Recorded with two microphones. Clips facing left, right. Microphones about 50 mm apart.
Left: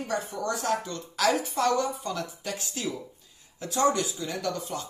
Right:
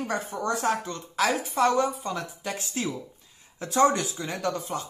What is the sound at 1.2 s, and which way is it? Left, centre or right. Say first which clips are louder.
A woman's voice: right 1 dB; centre.